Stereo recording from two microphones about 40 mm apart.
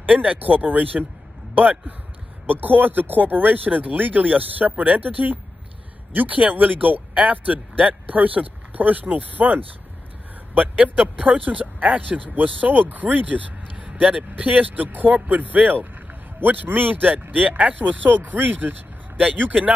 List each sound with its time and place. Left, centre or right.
0.4 s a man's voice: right
10.8 s speech: right
16.4 s a man's voice: right
16.7 s speech: right